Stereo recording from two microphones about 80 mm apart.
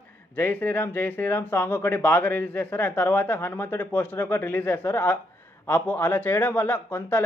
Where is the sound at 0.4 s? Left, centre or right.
Left.